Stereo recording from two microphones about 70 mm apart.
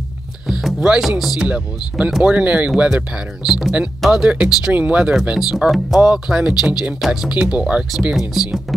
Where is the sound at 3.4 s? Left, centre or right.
Centre.